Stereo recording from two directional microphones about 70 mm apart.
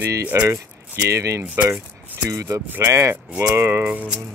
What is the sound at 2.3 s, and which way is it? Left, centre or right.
Speech, right.